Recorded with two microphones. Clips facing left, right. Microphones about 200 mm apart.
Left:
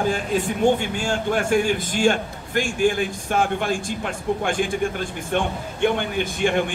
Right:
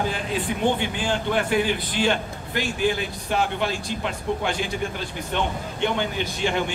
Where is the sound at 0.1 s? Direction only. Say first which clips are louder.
Left 4 dB; 45° left (ahead or behind).